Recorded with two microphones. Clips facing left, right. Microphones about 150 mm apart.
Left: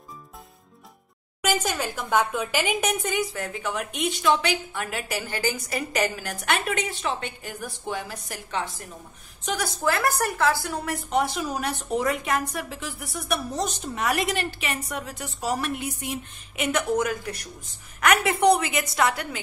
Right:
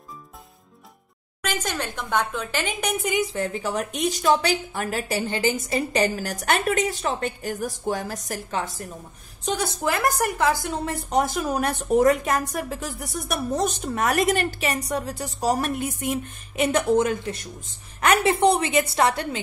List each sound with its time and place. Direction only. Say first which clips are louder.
1.4 s speech: left 3 dB; 10° left (ahead or behind)
3.1 s a woman's voice: right 3 dB; 20° right (ahead or behind); by 8.8 s 40° right (ahead or behind)
9.4 s a woman's voice: right 2 dB; 25° right (ahead or behind)
11.1 s a woman's voice: right 2 dB; 45° right (ahead or behind)
16.5 s a woman's voice: right 4 dB; 30° right (ahead or behind)